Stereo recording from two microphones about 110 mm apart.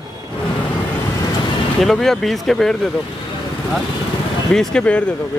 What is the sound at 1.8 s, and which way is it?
Speech, centre (ahead or behind).